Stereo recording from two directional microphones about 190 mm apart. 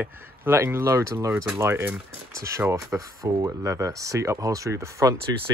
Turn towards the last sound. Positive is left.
turn(degrees=-15)  # may be behind; listen again after turning